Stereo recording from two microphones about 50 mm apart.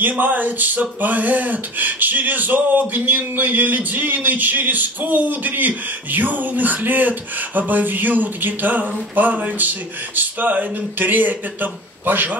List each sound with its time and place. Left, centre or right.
0.0 s speech: right